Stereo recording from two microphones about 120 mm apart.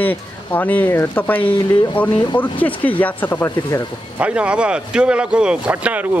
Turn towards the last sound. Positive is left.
turn(degrees=-15)  # may be behind; listen again after turning